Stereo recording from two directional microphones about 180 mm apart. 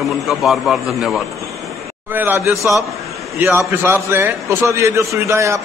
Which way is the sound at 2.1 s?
10° right (ahead or behind).